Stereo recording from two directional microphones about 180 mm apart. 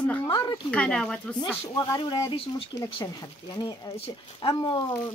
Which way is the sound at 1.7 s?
20° left (ahead or behind).